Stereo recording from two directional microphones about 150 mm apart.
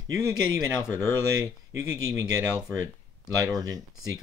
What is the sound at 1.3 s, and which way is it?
Speech, 20° right (ahead or behind).